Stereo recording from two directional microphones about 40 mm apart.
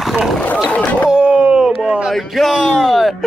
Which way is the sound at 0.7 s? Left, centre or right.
Left.